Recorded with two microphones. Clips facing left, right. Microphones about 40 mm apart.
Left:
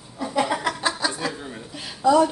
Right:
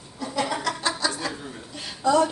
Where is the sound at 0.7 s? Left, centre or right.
Left.